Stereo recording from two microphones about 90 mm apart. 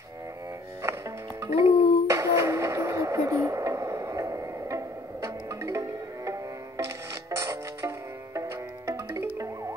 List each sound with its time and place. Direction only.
1.4 s music: 35° right (ahead or behind)